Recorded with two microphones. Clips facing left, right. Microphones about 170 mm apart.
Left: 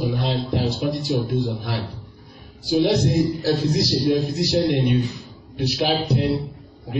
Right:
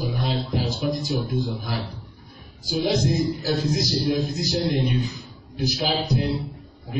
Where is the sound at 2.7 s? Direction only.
65° left (ahead or behind).